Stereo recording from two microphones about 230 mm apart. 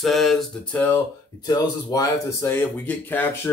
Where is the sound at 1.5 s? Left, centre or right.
Centre.